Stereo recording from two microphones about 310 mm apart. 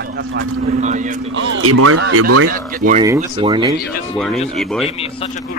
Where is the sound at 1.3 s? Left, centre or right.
Right.